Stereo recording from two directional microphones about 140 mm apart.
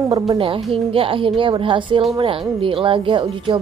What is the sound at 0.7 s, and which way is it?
A woman's voice, 40° right (ahead or behind).